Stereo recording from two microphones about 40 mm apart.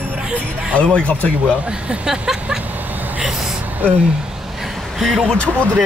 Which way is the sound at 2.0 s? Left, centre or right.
Centre.